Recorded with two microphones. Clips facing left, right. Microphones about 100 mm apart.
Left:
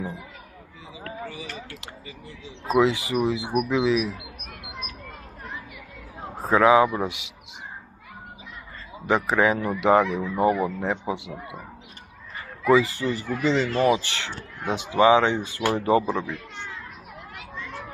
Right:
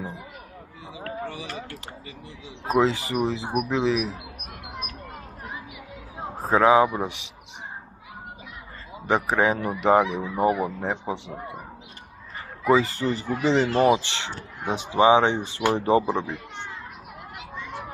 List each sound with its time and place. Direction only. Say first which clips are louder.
2.6 s speech: left 1 dB; 40° right (ahead or behind)
6.5 s speech: even; 25° right (ahead or behind)
9.0 s speech: left 1 dB; 20° right (ahead or behind)
12.8 s speech: right 1 dB; 35° right (ahead or behind)
17.4 s children playing: right 1 dB; 10° right (ahead or behind)